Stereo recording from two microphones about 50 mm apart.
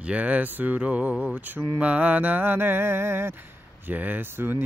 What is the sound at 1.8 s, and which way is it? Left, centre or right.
Speech, right.